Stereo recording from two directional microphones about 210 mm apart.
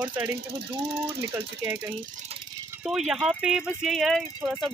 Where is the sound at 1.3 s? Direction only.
10° right (ahead or behind).